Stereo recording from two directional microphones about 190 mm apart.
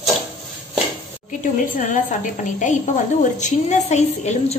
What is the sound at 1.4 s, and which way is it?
A woman's voice, 40° left (ahead or behind).